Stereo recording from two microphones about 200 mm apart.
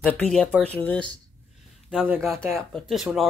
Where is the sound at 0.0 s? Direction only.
5° left (ahead or behind).